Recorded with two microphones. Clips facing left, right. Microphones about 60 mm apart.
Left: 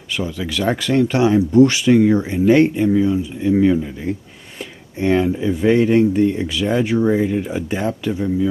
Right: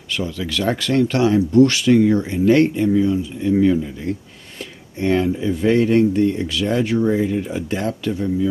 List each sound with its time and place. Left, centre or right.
0.1 s speech: centre